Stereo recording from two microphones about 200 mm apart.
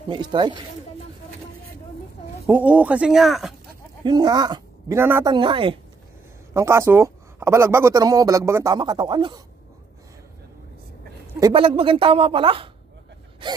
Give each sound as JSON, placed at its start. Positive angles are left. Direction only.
{"t": 0.1, "sound": "speech", "side_deg": -25}
{"t": 2.4, "sound": "speech", "side_deg": -10}
{"t": 4.0, "sound": "speech", "side_deg": -20}
{"t": 5.3, "sound": "speech", "side_deg": -25}
{"t": 6.5, "sound": "speech", "side_deg": -15}
{"t": 11.3, "sound": "speech", "side_deg": -20}